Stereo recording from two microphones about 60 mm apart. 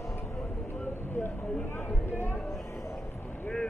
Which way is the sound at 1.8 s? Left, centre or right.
Left.